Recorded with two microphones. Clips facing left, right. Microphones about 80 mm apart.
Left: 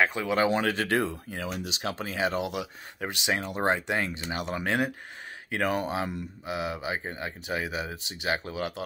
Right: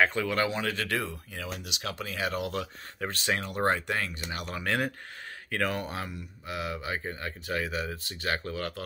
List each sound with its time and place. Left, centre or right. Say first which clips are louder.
0.0 s speech: left 1 dB; centre
0.5 s speech: left 5 dB; left
0.7 s speech: left 5 dB; left
2.5 s speech: even; centre